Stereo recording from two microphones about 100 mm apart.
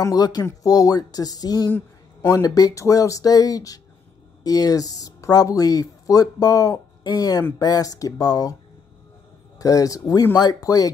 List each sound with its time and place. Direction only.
0.0 s speech: 40° left (ahead or behind)
9.6 s speech: 35° left (ahead or behind)